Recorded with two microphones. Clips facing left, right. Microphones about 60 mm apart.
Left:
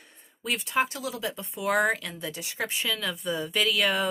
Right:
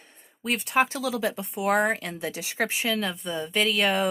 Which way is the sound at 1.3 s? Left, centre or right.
Right.